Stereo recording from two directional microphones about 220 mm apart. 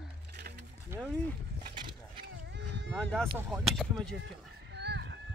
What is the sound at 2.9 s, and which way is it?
Speech, 5° left (ahead or behind).